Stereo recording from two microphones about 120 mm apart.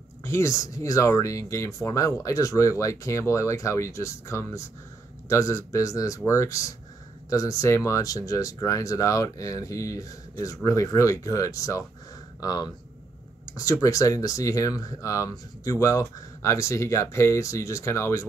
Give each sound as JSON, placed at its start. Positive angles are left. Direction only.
{"t": 0.2, "sound": "speech", "side_deg": 25}